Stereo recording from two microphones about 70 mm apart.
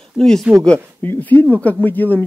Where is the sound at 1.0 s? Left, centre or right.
Left.